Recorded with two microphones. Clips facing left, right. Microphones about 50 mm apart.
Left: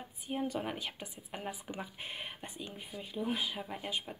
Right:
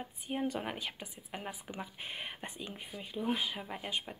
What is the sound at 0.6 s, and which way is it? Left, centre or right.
Speech, centre.